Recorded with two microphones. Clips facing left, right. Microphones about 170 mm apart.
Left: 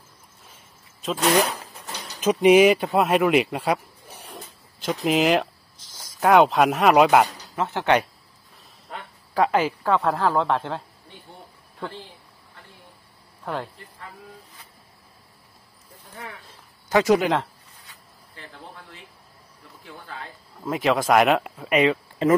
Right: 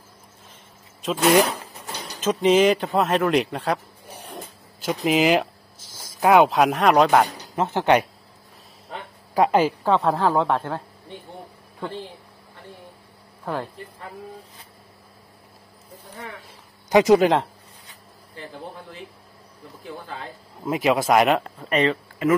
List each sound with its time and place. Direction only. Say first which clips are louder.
1.0 s speech: right 3 dB; centre (ahead or behind)
2.1 s speech: left 3 dB; 10° left (ahead or behind)
7.5 s speech: right 2 dB; 20° right (ahead or behind)
9.3 s speech: right 3 dB; 15° right (ahead or behind)
16.4 s a sound: right 2 dB; 20° right (ahead or behind)
17.2 s speech: right 4 dB; 35° right (ahead or behind)
20.6 s speech: right 1 dB; 10° right (ahead or behind); by 21.9 s 5° left (ahead or behind)
22.2 s speech: left 1 dB; 30° left (ahead or behind)